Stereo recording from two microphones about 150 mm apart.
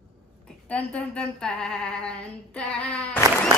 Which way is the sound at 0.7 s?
5° left (ahead or behind).